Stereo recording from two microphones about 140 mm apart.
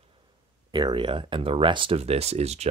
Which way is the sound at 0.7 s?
35° right (ahead or behind).